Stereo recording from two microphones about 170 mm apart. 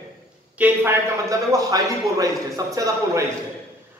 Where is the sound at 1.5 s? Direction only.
20° right (ahead or behind).